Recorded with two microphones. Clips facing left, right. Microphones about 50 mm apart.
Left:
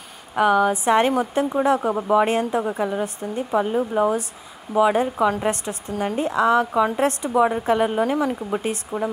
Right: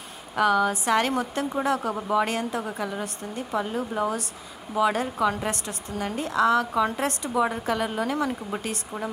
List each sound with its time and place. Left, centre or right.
0.4 s a woman's voice: centre
8.9 s speech: left